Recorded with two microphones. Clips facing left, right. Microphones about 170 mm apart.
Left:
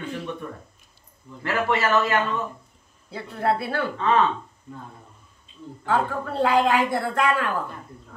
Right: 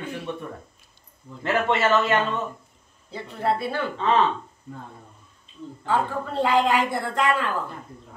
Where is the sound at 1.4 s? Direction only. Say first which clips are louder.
Right 1 dB; 20° right (ahead or behind).